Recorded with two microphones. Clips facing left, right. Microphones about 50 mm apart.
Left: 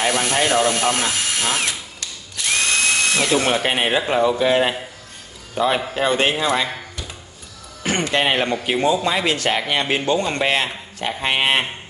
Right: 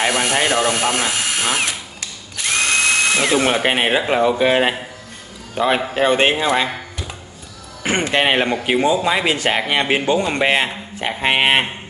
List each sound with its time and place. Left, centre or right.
0.0 s speech: right
3.2 s a man's voice: right
7.8 s speech: right